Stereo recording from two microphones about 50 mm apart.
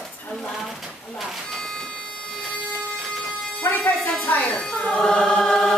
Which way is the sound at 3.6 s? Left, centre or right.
Left.